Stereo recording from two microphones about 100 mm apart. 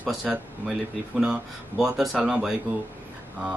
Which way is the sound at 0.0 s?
Centre (ahead or behind).